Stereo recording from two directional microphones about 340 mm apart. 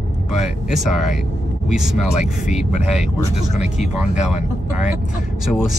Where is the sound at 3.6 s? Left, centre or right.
Centre.